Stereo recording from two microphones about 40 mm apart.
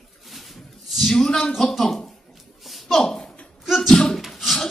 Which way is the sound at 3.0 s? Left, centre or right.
Centre.